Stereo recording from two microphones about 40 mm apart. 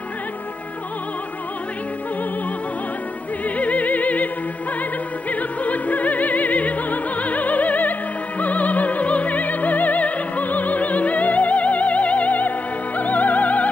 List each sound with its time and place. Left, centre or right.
3.4 s music: left
5.3 s opera: left